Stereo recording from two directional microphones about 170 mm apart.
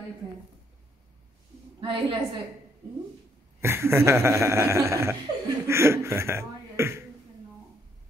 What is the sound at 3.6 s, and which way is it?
Speech, 15° right (ahead or behind).